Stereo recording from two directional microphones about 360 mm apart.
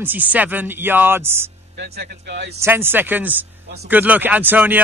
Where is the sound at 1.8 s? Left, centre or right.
Right.